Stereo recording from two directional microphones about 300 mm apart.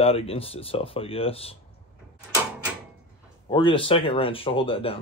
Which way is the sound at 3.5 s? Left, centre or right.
Centre.